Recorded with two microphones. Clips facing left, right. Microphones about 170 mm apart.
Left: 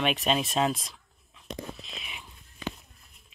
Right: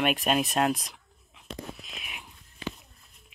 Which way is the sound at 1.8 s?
5° right (ahead or behind).